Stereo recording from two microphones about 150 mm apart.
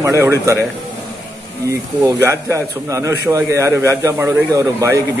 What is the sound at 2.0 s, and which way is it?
A man's voice, 20° right (ahead or behind).